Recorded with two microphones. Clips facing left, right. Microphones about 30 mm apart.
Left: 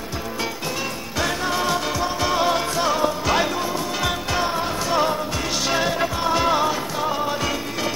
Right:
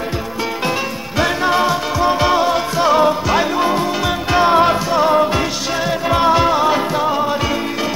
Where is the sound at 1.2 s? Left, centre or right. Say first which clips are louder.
Right 8 dB; right.